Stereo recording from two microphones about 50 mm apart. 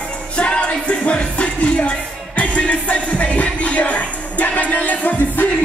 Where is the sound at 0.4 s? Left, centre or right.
Left.